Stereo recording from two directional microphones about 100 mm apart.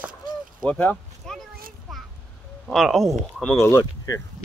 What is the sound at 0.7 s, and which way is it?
Speech, 15° left (ahead or behind).